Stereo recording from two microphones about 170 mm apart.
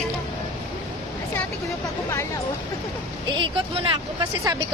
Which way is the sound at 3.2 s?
30° right (ahead or behind).